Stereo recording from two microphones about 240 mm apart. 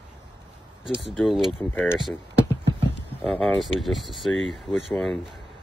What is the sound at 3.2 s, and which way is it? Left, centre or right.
Speech, centre.